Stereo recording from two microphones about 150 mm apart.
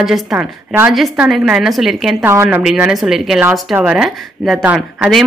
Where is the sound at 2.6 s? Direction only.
5° right (ahead or behind).